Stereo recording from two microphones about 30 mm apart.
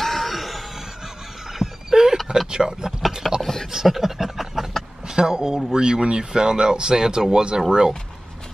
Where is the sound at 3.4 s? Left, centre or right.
Centre.